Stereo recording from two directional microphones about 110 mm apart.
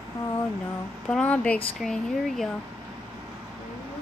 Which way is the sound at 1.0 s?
10° left (ahead or behind).